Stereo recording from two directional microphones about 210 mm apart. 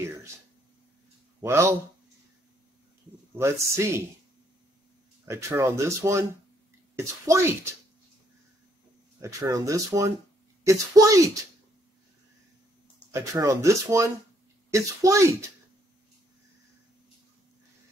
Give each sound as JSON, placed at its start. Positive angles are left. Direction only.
{"t": 1.4, "sound": "speech", "side_deg": -10}
{"t": 3.3, "sound": "speech", "side_deg": -10}
{"t": 5.2, "sound": "speech", "side_deg": -15}
{"t": 9.2, "sound": "speech", "side_deg": -15}
{"t": 13.1, "sound": "speech", "side_deg": -15}